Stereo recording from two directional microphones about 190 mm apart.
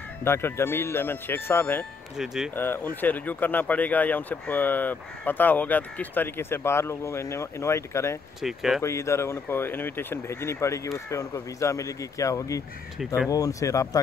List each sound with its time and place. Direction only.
0.2 s speech: 10° left (ahead or behind)
2.1 s speech: centre (ahead or behind)
2.5 s speech: 10° left (ahead or behind)
8.4 s speech: centre (ahead or behind)
8.8 s speech: 15° left (ahead or behind)